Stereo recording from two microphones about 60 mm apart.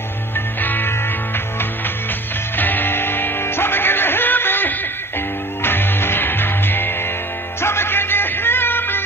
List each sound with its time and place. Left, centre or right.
0.6 s music: left
2.5 s music: left